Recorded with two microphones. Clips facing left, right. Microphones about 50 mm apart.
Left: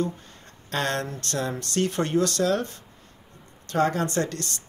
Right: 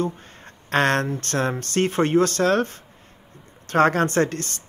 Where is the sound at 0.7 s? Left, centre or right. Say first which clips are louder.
Right 7 dB; right.